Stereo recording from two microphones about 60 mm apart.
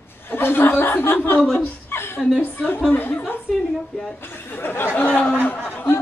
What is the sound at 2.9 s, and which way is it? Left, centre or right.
Speech, left.